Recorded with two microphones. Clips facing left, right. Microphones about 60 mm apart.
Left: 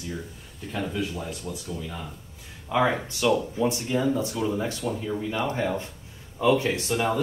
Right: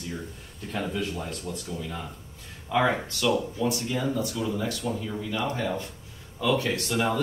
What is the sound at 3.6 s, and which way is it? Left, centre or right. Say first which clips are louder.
Speech: left 3 dB; left.